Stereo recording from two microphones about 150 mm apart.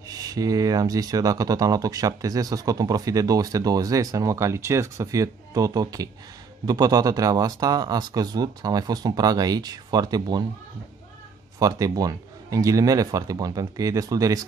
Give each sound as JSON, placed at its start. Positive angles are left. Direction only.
{"t": 0.1, "sound": "speech", "side_deg": -25}
{"t": 11.6, "sound": "speech", "side_deg": -25}